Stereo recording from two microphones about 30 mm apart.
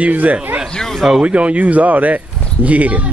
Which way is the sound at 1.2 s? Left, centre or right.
Right.